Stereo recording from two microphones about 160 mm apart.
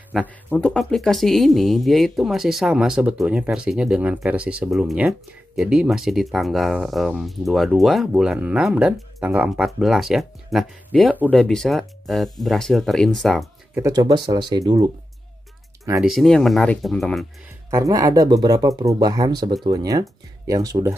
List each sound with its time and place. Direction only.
0.1 s speech: centre (ahead or behind)
13.7 s speech: 20° right (ahead or behind)
16.0 s speech: centre (ahead or behind)
17.6 s speech: 20° right (ahead or behind)